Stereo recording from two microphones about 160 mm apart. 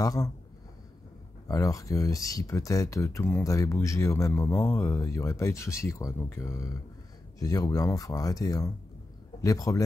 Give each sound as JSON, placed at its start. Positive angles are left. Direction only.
{"t": 0.0, "sound": "speech", "side_deg": 20}
{"t": 1.5, "sound": "speech", "side_deg": 20}